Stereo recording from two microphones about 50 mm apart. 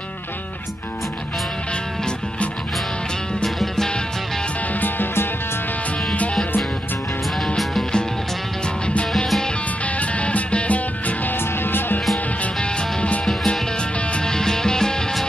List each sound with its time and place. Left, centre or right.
3.4 s music: centre
4.7 s music: left
9.9 s music: left
11.3 s music: left
13.2 s music: centre